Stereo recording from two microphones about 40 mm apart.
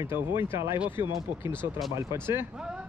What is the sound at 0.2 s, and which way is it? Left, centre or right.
Speech, right.